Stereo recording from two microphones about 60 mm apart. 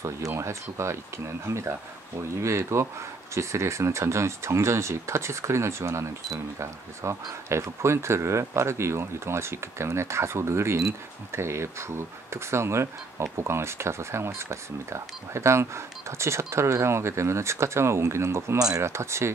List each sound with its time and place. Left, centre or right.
0.3 s speech: right